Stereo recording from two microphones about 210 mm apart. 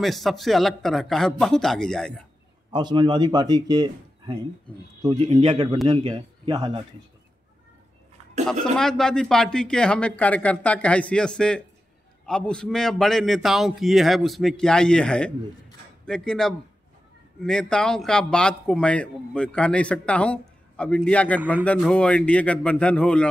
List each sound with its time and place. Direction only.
0.0 s speech: centre (ahead or behind)
2.7 s speech: 20° right (ahead or behind)
8.7 s speech: centre (ahead or behind)